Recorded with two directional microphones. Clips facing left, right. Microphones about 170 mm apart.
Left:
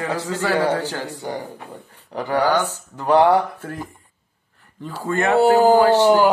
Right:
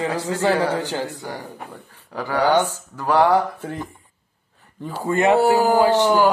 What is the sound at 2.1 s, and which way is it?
Speech, 20° left (ahead or behind).